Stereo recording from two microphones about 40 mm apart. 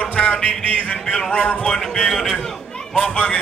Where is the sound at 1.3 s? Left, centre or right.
Left.